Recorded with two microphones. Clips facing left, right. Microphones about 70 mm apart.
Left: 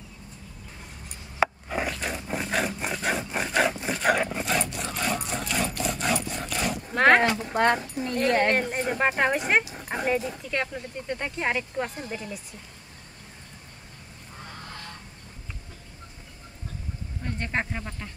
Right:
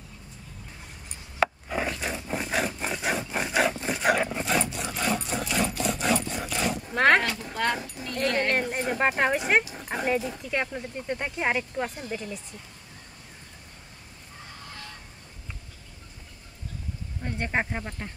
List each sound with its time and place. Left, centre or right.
1.4 s wood: centre
1.9 s dog: centre
2.2 s wood: centre
3.9 s sewing machine: centre
7.2 s speech: left
7.5 s speech: left
8.5 s speech: centre
11.7 s speech: centre
17.2 s speech: centre